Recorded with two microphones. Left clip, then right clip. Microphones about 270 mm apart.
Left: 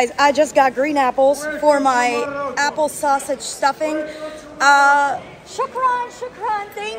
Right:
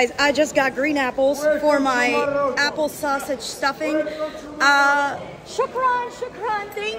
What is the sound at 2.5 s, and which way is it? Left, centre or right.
A woman's voice, centre.